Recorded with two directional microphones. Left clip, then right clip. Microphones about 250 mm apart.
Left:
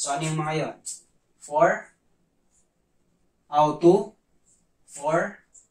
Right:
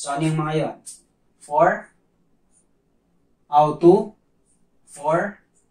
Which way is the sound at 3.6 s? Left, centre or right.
Centre.